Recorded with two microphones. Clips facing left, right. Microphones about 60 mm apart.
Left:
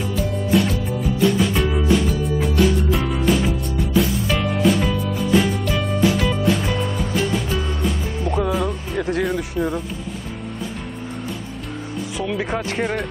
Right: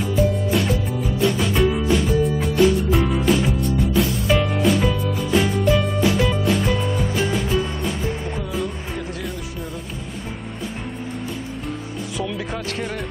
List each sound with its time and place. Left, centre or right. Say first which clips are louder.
0.2 s music: left 1 dB; centre
8.4 s music: left 5 dB; left
12.7 s speech: left 5 dB; left